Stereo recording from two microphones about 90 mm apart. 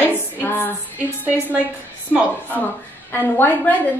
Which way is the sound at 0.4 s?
20° left (ahead or behind).